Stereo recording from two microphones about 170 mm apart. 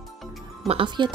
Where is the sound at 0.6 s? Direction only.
30° right (ahead or behind).